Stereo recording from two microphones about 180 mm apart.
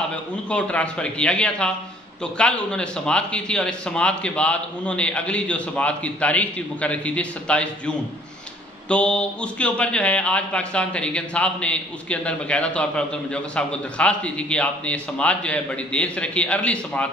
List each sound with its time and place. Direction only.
0.1 s a man's voice: 5° left (ahead or behind)